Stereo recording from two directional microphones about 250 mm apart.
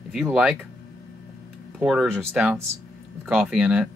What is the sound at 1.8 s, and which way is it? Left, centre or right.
Speech, centre.